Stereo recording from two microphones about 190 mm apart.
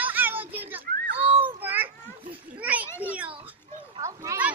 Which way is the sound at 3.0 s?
5° right (ahead or behind).